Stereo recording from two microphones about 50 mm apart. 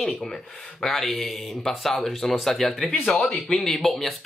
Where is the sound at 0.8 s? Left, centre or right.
Centre.